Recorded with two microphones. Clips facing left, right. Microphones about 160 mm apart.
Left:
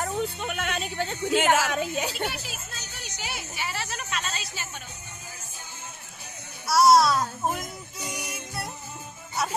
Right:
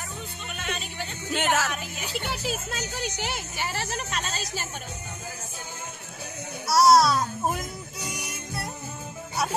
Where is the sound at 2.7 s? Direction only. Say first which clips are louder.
Right 10 dB; 85° right.